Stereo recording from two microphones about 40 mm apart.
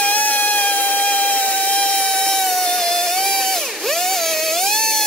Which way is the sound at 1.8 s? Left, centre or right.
Left.